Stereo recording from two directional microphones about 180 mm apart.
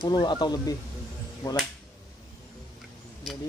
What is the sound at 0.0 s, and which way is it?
Speech, 25° left (ahead or behind).